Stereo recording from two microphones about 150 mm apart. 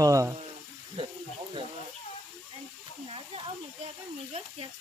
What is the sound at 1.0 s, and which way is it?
Speech, 35° right (ahead or behind).